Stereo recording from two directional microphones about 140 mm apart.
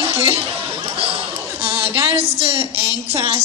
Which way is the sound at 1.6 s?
40° right (ahead or behind).